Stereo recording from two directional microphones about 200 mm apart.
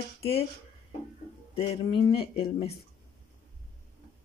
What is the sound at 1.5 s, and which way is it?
Speech, 25° left (ahead or behind).